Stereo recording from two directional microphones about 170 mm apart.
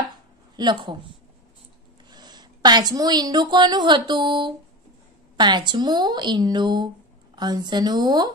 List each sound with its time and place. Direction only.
0.6 s a woman's voice: 25° right (ahead or behind)
2.0 s a woman's voice: 25° right (ahead or behind)